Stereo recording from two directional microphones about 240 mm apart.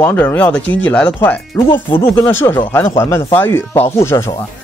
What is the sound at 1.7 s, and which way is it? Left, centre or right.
Speech, left.